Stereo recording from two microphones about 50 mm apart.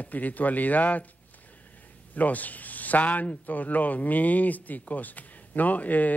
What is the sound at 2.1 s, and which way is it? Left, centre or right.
Speech, left.